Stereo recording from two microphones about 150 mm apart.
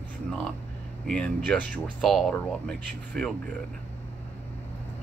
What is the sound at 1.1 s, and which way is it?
Speech, 10° left (ahead or behind).